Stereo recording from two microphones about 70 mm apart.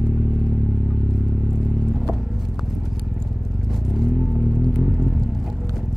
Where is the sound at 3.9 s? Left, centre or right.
Centre.